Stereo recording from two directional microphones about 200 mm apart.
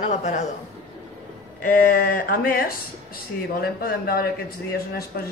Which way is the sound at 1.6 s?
45° left (ahead or behind).